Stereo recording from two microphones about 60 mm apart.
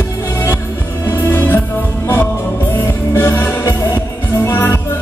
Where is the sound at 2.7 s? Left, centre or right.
Left.